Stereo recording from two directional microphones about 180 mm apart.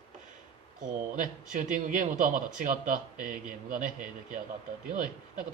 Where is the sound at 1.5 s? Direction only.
45° right (ahead or behind).